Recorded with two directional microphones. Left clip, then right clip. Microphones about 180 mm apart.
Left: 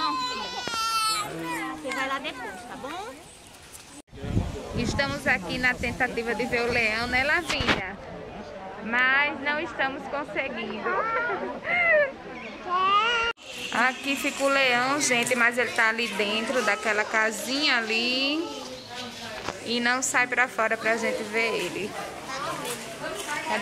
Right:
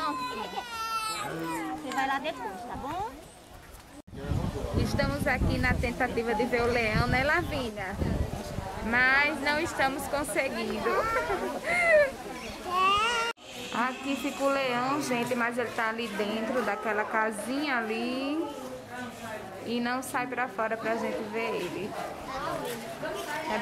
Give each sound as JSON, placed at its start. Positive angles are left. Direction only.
{"t": 0.7, "sound": "baby cry", "side_deg": -45}
{"t": 2.0, "sound": "a sound", "side_deg": -60}
{"t": 4.8, "sound": "speech", "side_deg": -10}
{"t": 8.9, "sound": "a woman's voice", "side_deg": -30}
{"t": 12.7, "sound": "speech", "side_deg": 5}
{"t": 19.7, "sound": "speech", "side_deg": 0}